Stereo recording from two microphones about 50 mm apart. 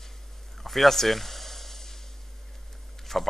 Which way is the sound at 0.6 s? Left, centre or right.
Centre.